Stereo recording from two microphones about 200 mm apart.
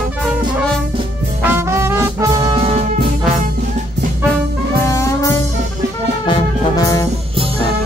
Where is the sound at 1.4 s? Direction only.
10° right (ahead or behind).